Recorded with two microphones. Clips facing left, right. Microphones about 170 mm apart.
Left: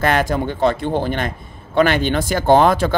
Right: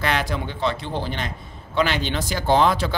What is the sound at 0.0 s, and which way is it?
Speech, 50° left (ahead or behind).